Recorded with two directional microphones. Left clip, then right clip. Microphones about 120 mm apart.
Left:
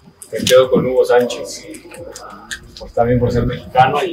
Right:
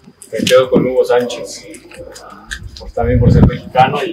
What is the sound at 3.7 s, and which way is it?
Speech, 15° left (ahead or behind).